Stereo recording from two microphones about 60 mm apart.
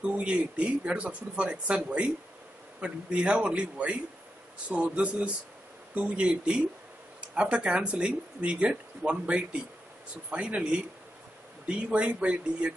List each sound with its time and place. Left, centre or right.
0.0 s speech: centre